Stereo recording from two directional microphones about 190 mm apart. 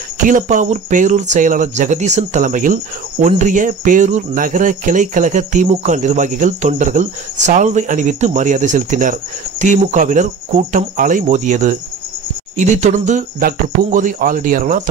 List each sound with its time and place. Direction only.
0.2 s speech: 40° right (ahead or behind)